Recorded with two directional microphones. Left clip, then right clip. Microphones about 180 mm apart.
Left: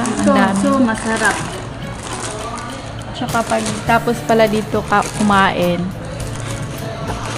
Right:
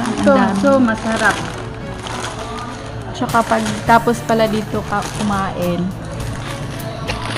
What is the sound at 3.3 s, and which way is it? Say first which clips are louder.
Speech: right 2 dB; 15° right (ahead or behind).